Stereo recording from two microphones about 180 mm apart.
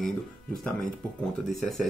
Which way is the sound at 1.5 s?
Centre (ahead or behind).